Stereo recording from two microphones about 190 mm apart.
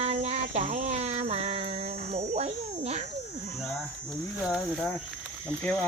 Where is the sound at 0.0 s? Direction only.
35° right (ahead or behind).